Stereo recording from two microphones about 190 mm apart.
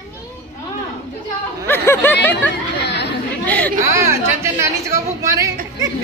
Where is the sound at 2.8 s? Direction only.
65° left (ahead or behind).